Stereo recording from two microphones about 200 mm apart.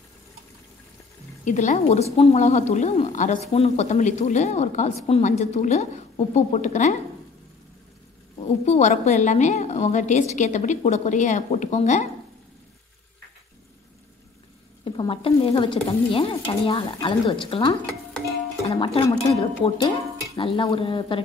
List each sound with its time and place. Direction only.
1.4 s a woman's voice: 40° left (ahead or behind)
8.5 s a woman's voice: 35° left (ahead or behind)
14.9 s speech: 25° left (ahead or behind)